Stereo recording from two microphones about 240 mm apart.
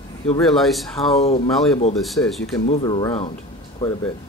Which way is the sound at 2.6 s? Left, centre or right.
Left.